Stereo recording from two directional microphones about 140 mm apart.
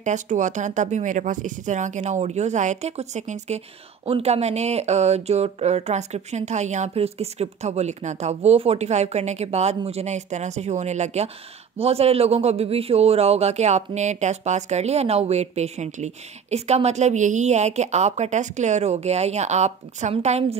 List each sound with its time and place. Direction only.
0.0 s speech: 60° right (ahead or behind)